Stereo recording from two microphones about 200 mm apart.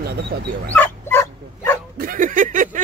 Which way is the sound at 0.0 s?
55° right (ahead or behind).